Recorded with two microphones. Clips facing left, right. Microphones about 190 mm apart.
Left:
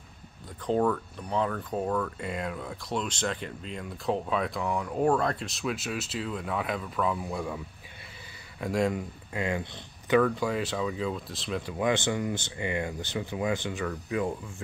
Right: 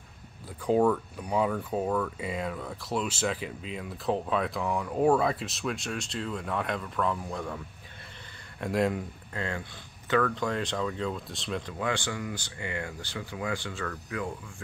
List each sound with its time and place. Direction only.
0.7 s speech: 10° right (ahead or behind)
9.3 s speech: 15° left (ahead or behind)
11.8 s speech: 20° left (ahead or behind)